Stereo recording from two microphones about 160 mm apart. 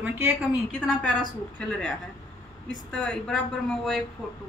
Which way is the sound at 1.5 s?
10° left (ahead or behind).